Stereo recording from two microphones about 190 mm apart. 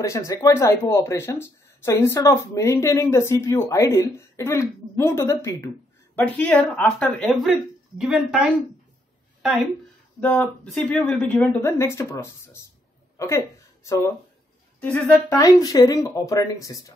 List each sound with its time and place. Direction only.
0.0 s a woman's voice: 15° left (ahead or behind)
13.8 s speech: 15° left (ahead or behind)